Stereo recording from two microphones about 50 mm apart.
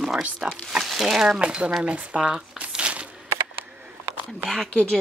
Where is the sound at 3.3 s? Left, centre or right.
Right.